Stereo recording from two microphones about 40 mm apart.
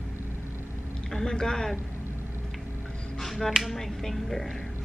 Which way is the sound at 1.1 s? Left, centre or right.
Centre.